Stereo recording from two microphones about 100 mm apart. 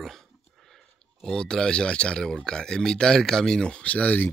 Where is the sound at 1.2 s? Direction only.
5° left (ahead or behind).